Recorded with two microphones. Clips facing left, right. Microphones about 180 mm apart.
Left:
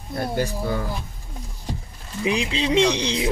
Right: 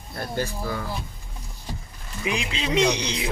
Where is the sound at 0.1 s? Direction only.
20° left (ahead or behind).